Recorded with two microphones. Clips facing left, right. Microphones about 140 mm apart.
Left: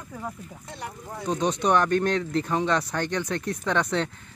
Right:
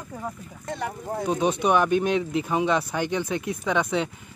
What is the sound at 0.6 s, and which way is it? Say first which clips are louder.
Speech: right 8 dB; 55° right (ahead or behind).